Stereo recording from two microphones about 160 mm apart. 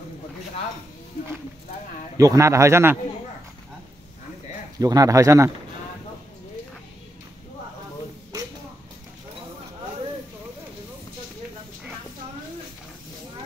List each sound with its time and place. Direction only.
2.1 s a man's voice: 20° right (ahead or behind)
4.7 s speech: 20° right (ahead or behind)